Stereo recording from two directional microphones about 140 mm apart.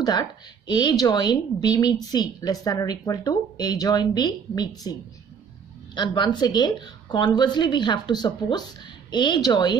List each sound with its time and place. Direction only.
0.0 s speech: 30° left (ahead or behind)
5.9 s a woman's voice: 35° left (ahead or behind)